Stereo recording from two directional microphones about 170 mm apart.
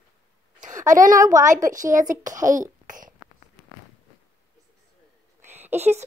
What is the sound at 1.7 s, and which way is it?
A child's voice, 50° right (ahead or behind).